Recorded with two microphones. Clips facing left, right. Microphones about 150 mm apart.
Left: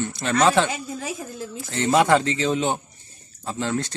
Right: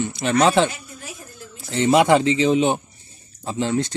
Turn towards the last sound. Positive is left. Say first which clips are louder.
# right 4 dB
turn(degrees=-20)  # may be behind; listen again after turning